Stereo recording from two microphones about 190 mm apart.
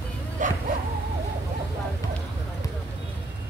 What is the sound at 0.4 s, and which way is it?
Bow-wow, 40° right (ahead or behind).